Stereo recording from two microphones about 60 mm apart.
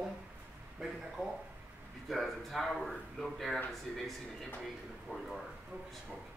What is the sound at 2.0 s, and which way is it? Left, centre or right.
Speech, centre.